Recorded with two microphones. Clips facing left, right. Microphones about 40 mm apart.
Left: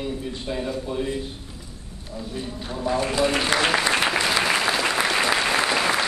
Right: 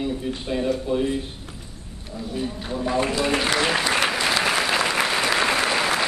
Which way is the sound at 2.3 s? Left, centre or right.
Centre.